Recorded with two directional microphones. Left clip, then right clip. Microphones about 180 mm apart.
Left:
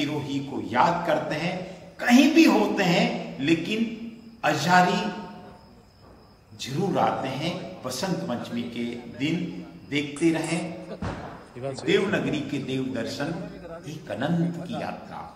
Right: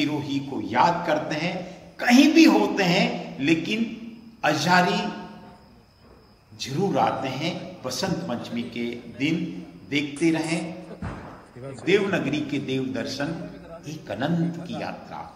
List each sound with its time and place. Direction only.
0.0 s a man's voice: 20° right (ahead or behind)
6.6 s a man's voice: 15° right (ahead or behind)
11.8 s a man's voice: 20° right (ahead or behind)